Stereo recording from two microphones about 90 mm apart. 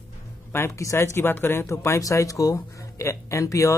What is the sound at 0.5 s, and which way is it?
A man's voice, 30° left (ahead or behind).